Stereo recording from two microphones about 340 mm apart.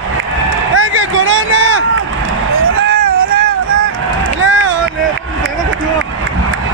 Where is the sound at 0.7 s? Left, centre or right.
Right.